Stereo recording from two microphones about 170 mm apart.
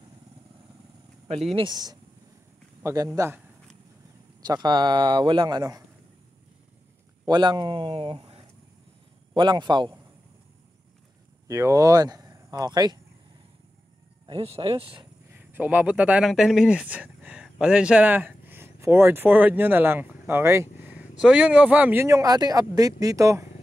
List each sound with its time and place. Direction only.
1.3 s a man's voice: 35° right (ahead or behind); by 3.4 s 15° right (ahead or behind)
4.4 s speech: 25° right (ahead or behind)
7.2 s speech: 25° right (ahead or behind)
11.4 s speech: 20° right (ahead or behind)
14.2 s speech: 35° right (ahead or behind)
15.3 s speech: 10° right (ahead or behind)